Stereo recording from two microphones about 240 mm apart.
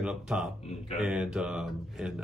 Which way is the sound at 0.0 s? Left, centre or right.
Centre.